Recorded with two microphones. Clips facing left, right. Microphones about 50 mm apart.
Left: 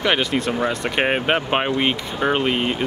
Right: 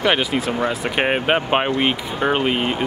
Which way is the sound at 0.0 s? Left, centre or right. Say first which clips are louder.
Right 1 dB; centre.